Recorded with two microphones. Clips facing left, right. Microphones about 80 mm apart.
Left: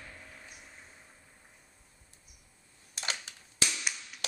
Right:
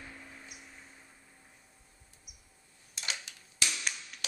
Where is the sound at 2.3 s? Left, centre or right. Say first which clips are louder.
Right 1 dB; centre.